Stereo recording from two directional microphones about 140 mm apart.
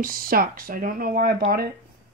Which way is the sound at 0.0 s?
90° right.